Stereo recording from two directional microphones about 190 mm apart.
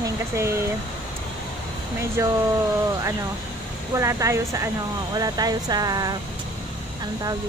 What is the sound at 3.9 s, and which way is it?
Speech, 15° right (ahead or behind).